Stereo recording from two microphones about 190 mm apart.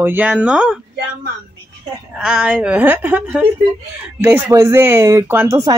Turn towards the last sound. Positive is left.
turn(degrees=-15)  # may be behind; listen again after turning